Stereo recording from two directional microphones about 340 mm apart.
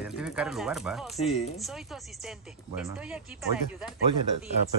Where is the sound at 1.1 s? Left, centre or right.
Centre.